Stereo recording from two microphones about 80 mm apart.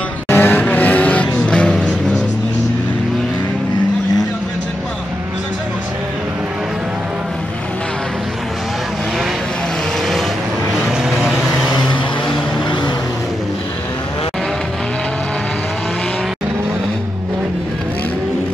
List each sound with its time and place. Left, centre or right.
0.3 s vehicle: left
10.9 s vehicle: centre